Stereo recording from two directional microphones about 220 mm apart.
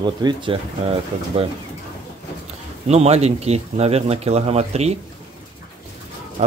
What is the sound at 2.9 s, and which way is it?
Speech, 30° right (ahead or behind).